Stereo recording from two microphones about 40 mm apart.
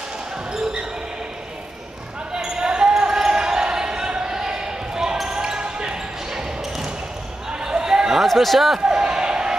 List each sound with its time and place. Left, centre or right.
2.3 s basketball bounce: centre
2.9 s basketball bounce: centre
7.5 s basketball bounce: centre
8.3 s speech: centre
8.7 s basketball bounce: centre